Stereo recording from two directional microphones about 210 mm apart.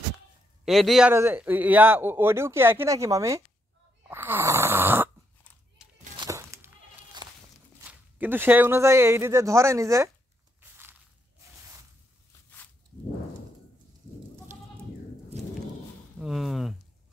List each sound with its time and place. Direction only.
0.7 s a man's voice: centre (ahead or behind)
4.1 s snoring: 10° right (ahead or behind)
6.1 s a sound: 15° right (ahead or behind)
7.2 s walk: 20° right (ahead or behind)
7.8 s a man's voice: 10° right (ahead or behind)
10.6 s crushing: 10° right (ahead or behind)
16.2 s speech: centre (ahead or behind)